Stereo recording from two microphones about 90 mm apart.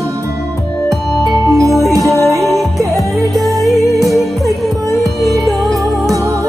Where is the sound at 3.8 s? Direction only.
40° right (ahead or behind).